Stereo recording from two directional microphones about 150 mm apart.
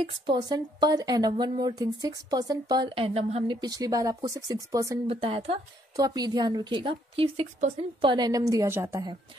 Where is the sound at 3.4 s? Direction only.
25° right (ahead or behind).